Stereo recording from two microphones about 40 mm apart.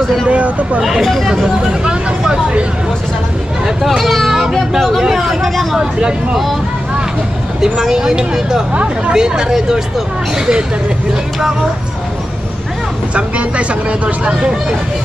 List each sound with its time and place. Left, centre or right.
0.0 s speech: centre
0.3 s speech: right
1.0 s speech: centre
1.3 s speech: centre
3.8 s speech: centre
5.8 s speech: right
7.6 s speech: centre
8.7 s speech: right
9.1 s speech: centre
13.1 s speech: right